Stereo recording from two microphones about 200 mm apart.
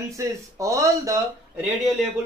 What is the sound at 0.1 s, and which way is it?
Speech, 15° right (ahead or behind).